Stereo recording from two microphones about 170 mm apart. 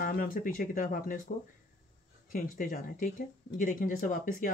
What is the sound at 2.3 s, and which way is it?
Speech, 50° left (ahead or behind).